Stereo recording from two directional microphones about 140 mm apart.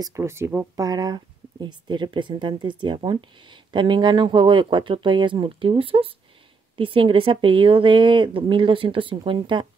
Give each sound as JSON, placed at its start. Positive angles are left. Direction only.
{"t": 0.0, "sound": "speech", "side_deg": -20}